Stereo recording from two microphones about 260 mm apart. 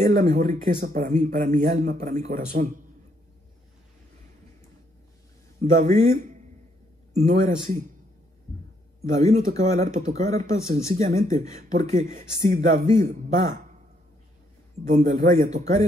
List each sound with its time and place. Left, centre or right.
0.0 s speech: right
5.6 s speech: right
9.5 s speech: right
14.9 s speech: right